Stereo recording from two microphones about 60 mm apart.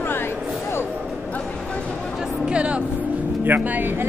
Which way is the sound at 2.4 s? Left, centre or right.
Centre.